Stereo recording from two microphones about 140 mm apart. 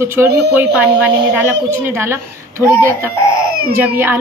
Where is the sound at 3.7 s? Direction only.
15° right (ahead or behind).